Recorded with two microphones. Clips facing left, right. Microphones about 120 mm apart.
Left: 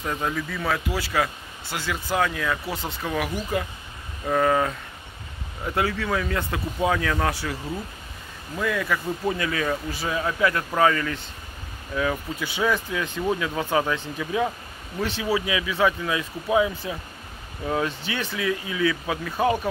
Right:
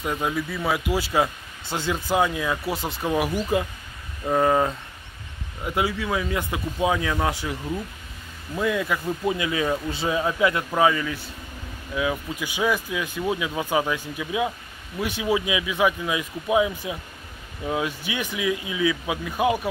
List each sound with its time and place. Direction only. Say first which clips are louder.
0.0 s speech: right 2 dB; 10° right (ahead or behind)
5.8 s speech: even; 10° right (ahead or behind)
8.5 s speech: right 1 dB; 20° right (ahead or behind)